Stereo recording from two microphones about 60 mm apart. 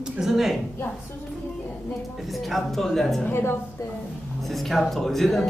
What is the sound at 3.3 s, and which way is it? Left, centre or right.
Speech, left.